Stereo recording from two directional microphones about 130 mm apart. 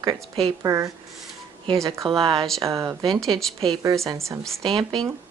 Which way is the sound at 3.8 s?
25° right (ahead or behind).